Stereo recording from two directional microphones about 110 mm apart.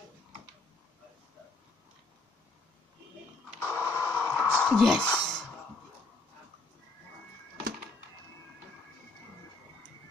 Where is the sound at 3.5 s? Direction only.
25° left (ahead or behind).